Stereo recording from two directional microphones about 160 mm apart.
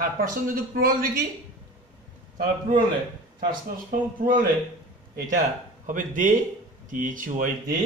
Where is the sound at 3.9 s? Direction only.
60° right (ahead or behind).